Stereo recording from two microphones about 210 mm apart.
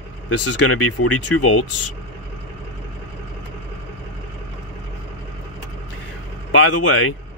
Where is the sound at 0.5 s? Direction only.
90° left.